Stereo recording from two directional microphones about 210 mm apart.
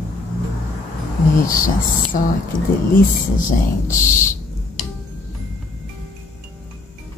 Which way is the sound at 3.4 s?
40° left (ahead or behind).